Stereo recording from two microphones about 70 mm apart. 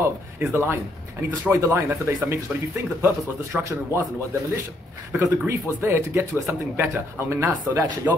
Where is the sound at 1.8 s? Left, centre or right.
Right.